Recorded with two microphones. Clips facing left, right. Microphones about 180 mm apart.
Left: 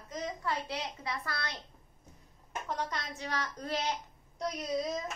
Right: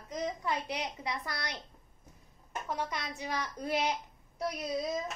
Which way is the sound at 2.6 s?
10° right (ahead or behind).